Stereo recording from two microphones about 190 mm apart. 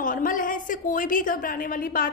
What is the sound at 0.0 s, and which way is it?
A woman's voice, 45° left (ahead or behind).